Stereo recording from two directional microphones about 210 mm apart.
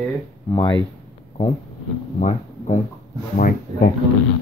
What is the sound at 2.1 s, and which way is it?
Speech, 35° left (ahead or behind).